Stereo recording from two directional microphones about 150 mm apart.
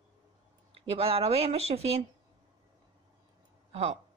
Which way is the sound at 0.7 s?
40° right (ahead or behind).